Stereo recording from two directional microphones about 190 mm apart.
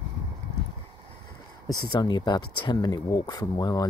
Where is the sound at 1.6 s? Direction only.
20° left (ahead or behind).